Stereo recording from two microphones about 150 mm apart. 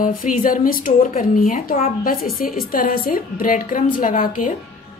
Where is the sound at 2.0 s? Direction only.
75° left (ahead or behind).